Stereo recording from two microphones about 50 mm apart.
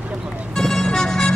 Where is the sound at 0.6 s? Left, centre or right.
Centre.